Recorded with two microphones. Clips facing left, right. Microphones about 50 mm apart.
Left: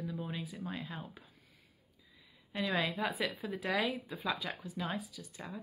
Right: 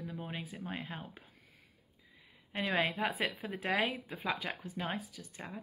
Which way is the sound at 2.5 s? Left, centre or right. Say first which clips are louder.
Right 1 dB; right.